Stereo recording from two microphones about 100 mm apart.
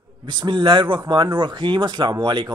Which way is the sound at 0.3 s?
55° right (ahead or behind).